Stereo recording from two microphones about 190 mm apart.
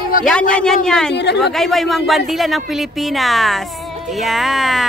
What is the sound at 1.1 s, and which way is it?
Speech, 65° left (ahead or behind).